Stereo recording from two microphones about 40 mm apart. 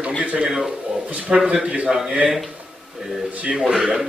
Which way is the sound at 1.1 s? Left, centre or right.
Right.